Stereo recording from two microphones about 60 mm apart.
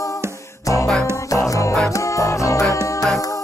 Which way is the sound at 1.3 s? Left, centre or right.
Left.